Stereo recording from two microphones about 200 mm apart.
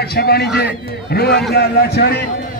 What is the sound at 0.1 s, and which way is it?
A man's voice, 50° left (ahead or behind).